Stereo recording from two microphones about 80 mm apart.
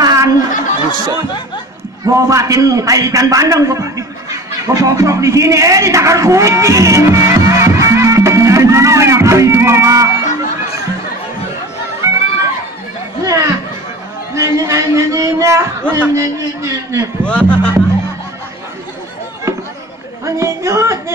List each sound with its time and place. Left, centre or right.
0.0 s chatter: right
0.9 s speech: right
2.0 s a man's voice: right
12.0 s run: right
13.2 s a sound: right
14.3 s speech: right
15.8 s a man's voice: right
16.2 s a man's voice: right
17.2 s speech: centre
20.2 s a man's voice: right